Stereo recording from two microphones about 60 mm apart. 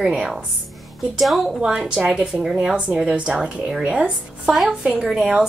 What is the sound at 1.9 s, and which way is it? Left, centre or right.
Speech, centre.